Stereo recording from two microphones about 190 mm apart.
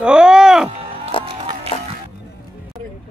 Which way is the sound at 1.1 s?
25° left (ahead or behind).